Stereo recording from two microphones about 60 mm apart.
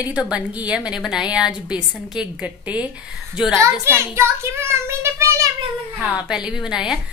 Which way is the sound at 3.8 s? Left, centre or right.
Right.